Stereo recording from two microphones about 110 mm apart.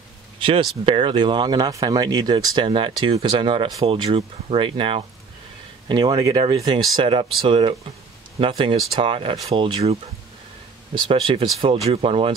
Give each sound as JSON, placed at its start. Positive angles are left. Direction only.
{"t": 0.4, "sound": "speech", "side_deg": -55}
{"t": 5.9, "sound": "speech", "side_deg": -40}
{"t": 7.1, "sound": "speech", "side_deg": -55}
{"t": 11.0, "sound": "speech", "side_deg": -50}